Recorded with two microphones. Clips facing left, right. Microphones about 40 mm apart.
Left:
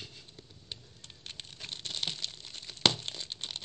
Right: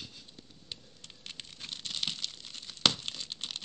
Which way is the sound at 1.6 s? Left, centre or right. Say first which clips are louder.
Even; left.